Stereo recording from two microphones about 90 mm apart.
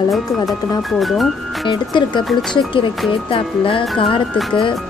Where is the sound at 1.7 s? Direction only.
60° left (ahead or behind).